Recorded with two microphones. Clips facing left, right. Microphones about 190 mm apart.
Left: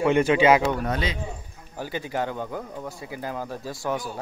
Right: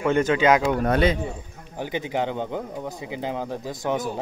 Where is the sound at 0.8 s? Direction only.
55° right (ahead or behind).